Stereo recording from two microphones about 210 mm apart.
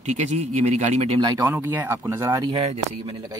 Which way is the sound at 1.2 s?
15° right (ahead or behind).